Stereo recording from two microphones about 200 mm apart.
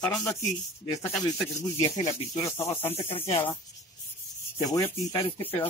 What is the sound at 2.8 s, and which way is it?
Speech, 30° left (ahead or behind).